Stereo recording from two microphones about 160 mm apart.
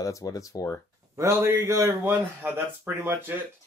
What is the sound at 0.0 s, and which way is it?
Speech, 20° left (ahead or behind).